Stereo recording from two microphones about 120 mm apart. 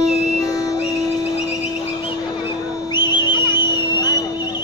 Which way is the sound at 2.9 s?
40° left (ahead or behind).